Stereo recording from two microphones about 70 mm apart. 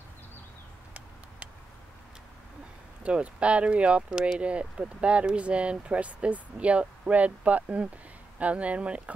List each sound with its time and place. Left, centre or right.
3.0 s speech: centre